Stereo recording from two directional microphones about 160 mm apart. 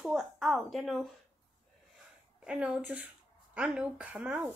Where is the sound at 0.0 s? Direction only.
Centre (ahead or behind).